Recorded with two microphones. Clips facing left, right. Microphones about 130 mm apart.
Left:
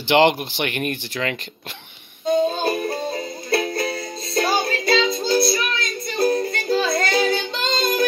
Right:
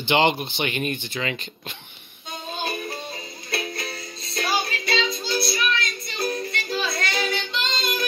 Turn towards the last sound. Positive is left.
turn(degrees=40)  # may be behind; listen again after turning